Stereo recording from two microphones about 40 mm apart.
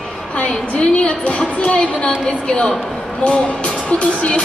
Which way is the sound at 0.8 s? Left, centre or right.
Left.